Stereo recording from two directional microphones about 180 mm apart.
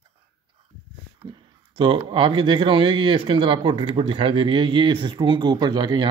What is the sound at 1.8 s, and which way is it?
Speech, 25° right (ahead or behind).